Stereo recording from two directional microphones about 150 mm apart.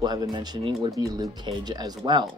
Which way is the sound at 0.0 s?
25° right (ahead or behind).